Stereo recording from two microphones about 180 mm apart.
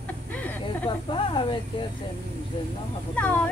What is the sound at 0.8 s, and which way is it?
Snake, 25° left (ahead or behind).